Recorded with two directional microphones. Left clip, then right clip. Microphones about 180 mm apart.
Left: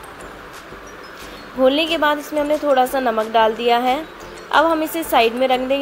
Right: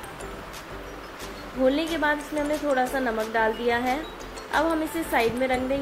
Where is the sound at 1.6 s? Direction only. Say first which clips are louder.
Left 7 dB; 10° left (ahead or behind).